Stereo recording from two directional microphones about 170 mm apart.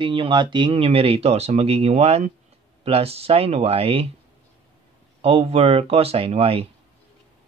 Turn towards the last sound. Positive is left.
turn(degrees=-35)  # may be behind; listen again after turning